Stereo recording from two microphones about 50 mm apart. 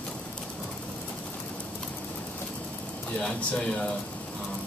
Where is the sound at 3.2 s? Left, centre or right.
Left.